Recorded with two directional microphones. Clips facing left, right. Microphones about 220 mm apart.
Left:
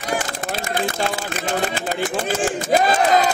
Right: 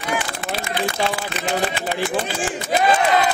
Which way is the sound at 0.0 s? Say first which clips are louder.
Left 1 dB; 40° left (ahead or behind).